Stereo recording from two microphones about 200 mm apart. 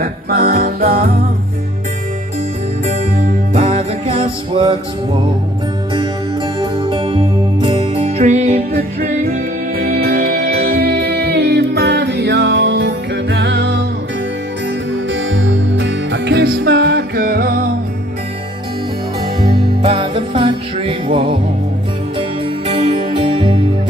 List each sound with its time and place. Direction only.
0.0 s music: 50° right (ahead or behind)
2.9 s music: 35° right (ahead or behind)
6.6 s music: 25° right (ahead or behind)
9.8 s music: 50° right (ahead or behind)
15.2 s music: 70° right (ahead or behind); by 17.6 s 50° right (ahead or behind)
19.8 s music: 25° right (ahead or behind)